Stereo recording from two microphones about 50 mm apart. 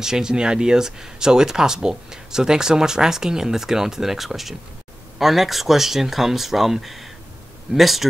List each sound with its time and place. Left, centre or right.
0.0 s speech: centre